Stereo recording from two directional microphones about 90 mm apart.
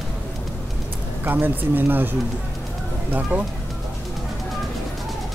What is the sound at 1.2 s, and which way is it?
Speech, 20° right (ahead or behind).